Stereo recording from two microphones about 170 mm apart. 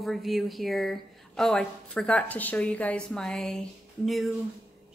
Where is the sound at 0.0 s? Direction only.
Centre (ahead or behind).